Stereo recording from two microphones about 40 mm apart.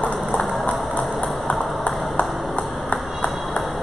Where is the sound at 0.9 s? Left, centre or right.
Left.